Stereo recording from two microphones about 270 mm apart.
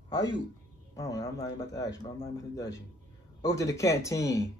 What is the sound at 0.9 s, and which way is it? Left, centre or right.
Speech, centre.